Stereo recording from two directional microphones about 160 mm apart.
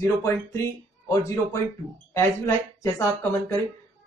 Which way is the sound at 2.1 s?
20° left (ahead or behind).